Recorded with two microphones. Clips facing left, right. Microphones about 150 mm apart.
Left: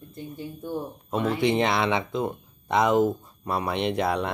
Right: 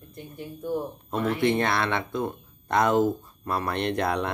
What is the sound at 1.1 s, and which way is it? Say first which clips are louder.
Speech: left 1 dB; 15° left (ahead or behind).